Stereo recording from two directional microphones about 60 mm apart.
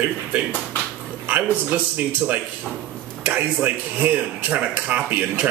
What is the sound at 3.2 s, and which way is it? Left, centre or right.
A man's voice, right.